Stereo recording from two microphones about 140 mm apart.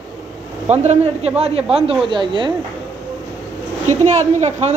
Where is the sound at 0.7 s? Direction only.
50° right (ahead or behind).